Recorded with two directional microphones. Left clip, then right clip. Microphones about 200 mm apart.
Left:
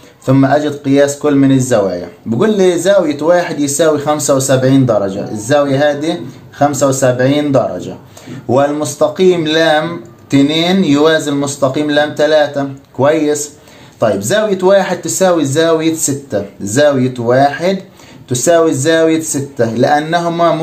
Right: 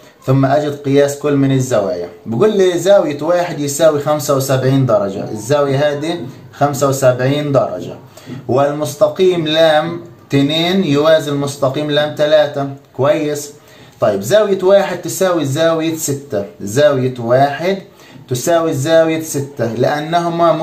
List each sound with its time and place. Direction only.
0.2 s speech: 45° left (ahead or behind)